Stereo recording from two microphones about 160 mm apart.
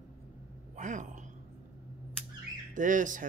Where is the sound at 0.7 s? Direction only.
50° right (ahead or behind).